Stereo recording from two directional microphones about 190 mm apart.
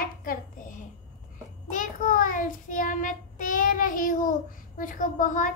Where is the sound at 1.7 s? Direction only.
45° left (ahead or behind).